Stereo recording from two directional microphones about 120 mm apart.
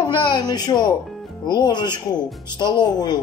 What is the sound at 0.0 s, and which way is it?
Speech, 35° left (ahead or behind).